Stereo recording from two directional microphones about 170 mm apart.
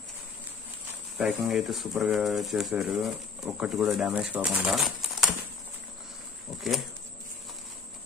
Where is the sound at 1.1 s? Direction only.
Centre (ahead or behind).